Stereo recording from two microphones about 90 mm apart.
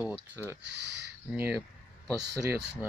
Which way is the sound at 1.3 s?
10° right (ahead or behind).